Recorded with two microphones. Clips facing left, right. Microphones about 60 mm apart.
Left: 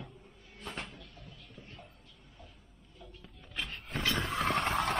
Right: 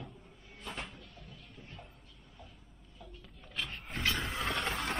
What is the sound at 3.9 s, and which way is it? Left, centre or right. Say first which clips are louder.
Vehicle: left 1 dB; centre.